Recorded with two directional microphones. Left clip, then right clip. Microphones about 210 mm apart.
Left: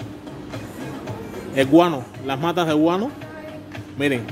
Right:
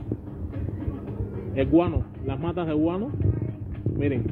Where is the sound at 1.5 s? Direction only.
30° left (ahead or behind).